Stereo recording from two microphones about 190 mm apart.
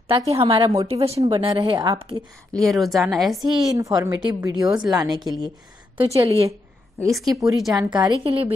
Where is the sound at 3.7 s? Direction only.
15° right (ahead or behind).